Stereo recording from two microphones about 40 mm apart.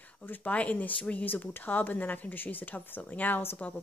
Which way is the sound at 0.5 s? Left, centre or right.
Left.